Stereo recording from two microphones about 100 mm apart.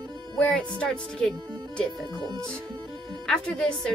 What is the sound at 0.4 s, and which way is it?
Speech, 10° left (ahead or behind).